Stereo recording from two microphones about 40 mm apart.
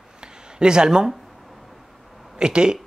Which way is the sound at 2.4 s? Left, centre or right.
Right.